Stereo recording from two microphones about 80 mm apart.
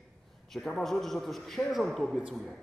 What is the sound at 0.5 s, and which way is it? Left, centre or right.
A man's voice, centre.